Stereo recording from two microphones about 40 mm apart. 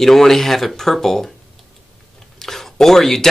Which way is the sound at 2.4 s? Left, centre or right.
Centre.